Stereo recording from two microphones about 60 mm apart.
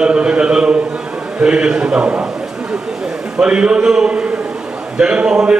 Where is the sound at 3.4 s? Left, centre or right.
Centre.